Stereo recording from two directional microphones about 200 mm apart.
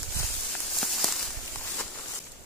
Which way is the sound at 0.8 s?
Centre (ahead or behind).